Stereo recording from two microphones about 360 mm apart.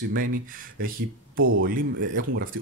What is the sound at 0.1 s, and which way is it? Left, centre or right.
Speech, right.